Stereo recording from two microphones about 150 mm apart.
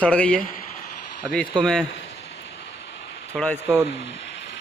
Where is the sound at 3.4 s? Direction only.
Centre (ahead or behind).